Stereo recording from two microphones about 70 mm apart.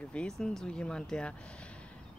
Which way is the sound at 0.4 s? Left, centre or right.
Centre.